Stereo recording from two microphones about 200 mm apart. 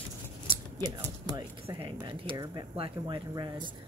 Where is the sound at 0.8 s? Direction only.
20° right (ahead or behind).